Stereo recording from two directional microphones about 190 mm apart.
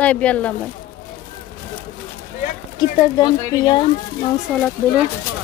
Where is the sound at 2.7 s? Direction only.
20° left (ahead or behind).